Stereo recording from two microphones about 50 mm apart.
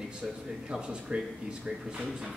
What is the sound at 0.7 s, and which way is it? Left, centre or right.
A man's voice, centre.